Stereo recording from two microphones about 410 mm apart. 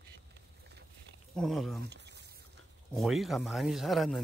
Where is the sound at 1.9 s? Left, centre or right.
Right.